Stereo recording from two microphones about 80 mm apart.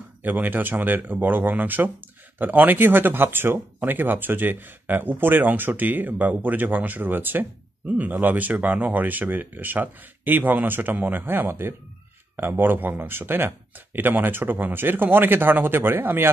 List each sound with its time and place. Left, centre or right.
0.2 s speech: right